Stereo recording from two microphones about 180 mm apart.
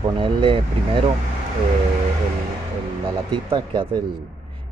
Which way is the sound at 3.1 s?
25° right (ahead or behind).